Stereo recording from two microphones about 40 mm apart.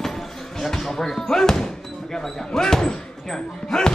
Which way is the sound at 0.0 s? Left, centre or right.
Centre.